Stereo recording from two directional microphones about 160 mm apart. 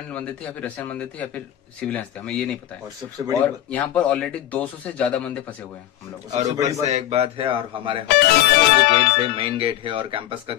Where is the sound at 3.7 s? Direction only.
5° left (ahead or behind).